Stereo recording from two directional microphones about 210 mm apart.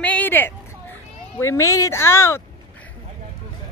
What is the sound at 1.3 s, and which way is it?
Speech, 15° left (ahead or behind).